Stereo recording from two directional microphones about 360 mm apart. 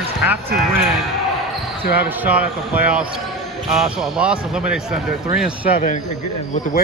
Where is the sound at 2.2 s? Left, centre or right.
Centre.